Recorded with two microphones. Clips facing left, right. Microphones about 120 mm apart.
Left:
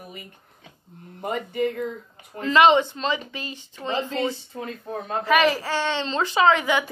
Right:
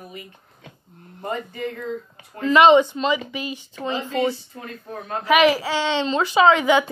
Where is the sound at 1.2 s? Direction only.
15° left (ahead or behind).